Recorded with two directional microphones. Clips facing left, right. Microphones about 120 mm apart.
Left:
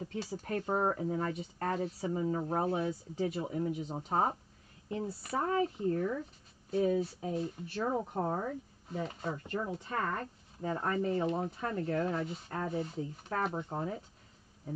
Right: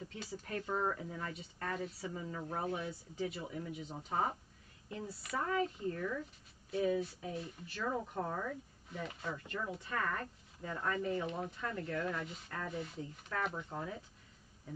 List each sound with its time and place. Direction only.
0.0 s speech: 40° left (ahead or behind)